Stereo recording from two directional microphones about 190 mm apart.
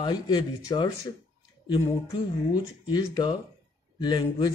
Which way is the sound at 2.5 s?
20° left (ahead or behind).